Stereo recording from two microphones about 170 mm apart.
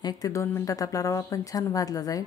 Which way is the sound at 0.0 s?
25° left (ahead or behind).